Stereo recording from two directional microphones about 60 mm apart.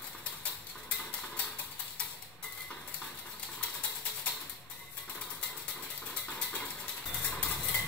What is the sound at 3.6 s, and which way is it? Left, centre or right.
Mechanisms, left.